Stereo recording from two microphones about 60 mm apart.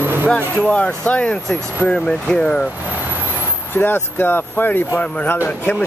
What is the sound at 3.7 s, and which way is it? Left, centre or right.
Speech, left.